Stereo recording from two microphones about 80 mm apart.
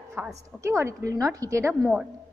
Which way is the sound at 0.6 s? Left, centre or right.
Right.